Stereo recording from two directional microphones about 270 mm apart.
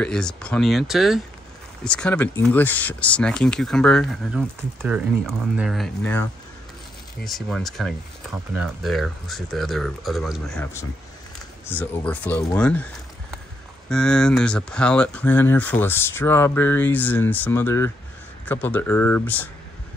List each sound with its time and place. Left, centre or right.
0.0 s speech: centre
7.2 s speech: centre
13.8 s speech: centre